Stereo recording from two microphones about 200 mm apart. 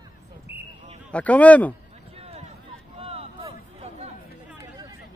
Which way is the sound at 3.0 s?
30° right (ahead or behind).